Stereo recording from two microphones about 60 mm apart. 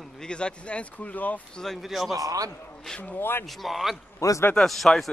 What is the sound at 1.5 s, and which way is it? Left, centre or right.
Speech, centre.